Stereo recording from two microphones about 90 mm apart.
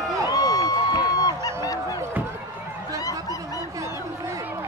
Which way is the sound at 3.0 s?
40° left (ahead or behind).